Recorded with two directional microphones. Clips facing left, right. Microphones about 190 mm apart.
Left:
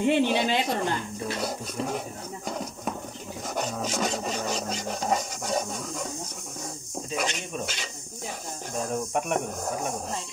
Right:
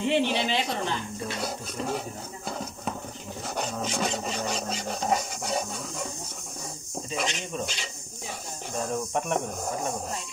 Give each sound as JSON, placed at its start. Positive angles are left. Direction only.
{"t": 0.0, "sound": "a woman's voice", "side_deg": 50}
{"t": 1.2, "sound": "filing", "side_deg": 5}
{"t": 3.5, "sound": "filing", "side_deg": 5}
{"t": 7.1, "sound": "filing", "side_deg": 0}
{"t": 8.7, "sound": "filing", "side_deg": 5}